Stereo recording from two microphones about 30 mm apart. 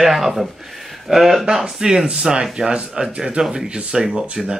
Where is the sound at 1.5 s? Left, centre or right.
Centre.